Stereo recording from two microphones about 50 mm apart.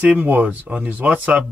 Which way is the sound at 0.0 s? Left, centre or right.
Right.